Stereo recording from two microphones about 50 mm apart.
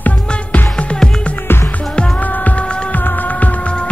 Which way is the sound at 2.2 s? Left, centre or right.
Left.